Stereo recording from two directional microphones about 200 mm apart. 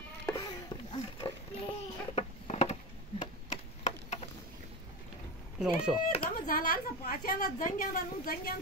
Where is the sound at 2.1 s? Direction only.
30° left (ahead or behind).